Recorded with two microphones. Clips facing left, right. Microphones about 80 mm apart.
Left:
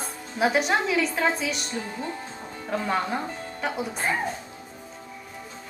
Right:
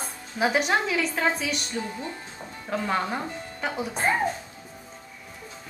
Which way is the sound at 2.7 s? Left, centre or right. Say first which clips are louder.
Left 1 dB; centre.